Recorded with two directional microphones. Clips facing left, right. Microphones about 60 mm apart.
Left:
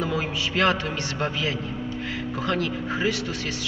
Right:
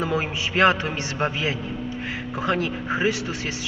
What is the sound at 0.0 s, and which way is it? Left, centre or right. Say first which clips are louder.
A man's voice: right 2 dB; right.